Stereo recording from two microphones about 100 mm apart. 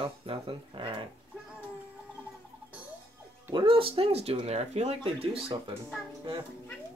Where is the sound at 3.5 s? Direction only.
60° right (ahead or behind); by 5.4 s 75° right (ahead or behind).